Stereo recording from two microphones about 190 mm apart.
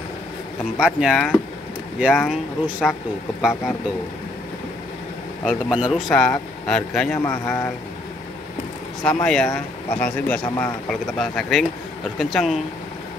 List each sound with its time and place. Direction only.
0.7 s speech: 5° right (ahead or behind)
5.4 s speech: 5° right (ahead or behind)
6.0 s speech: 5° left (ahead or behind)
7.2 s speech: 15° left (ahead or behind)
9.0 s speech: 5° left (ahead or behind)